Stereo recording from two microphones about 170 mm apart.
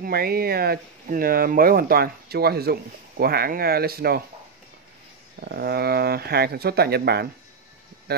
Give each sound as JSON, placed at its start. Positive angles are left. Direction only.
{"t": 0.0, "sound": "speech", "side_deg": -65}
{"t": 5.4, "sound": "speech", "side_deg": -65}